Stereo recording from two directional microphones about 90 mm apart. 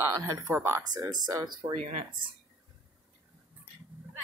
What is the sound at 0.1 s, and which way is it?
Speech, 40° right (ahead or behind).